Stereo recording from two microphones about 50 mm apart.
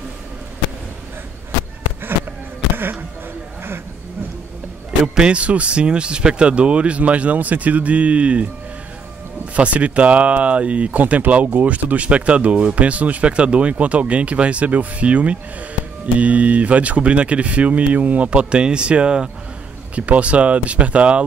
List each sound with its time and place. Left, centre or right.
5.0 s speech: centre
9.6 s speech: right